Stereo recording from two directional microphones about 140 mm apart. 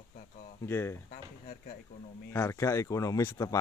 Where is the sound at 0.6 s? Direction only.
15° left (ahead or behind).